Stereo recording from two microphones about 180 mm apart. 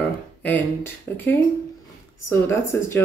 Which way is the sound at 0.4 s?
10° left (ahead or behind).